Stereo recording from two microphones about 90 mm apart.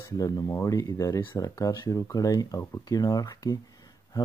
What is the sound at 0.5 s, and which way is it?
Speech, 25° left (ahead or behind).